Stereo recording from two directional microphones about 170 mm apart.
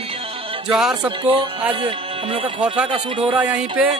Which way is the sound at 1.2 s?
35° right (ahead or behind).